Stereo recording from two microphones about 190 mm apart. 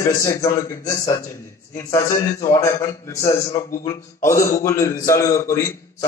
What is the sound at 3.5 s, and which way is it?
Speech, 40° left (ahead or behind).